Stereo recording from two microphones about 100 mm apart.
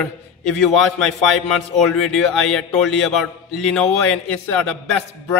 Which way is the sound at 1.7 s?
5° left (ahead or behind).